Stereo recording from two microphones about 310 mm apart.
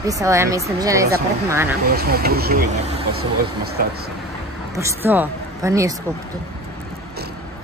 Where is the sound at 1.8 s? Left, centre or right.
Right.